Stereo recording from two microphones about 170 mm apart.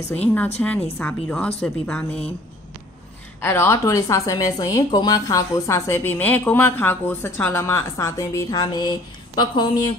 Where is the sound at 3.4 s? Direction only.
15° left (ahead or behind).